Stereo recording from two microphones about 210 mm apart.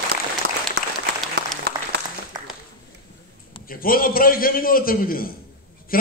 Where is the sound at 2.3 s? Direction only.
15° right (ahead or behind).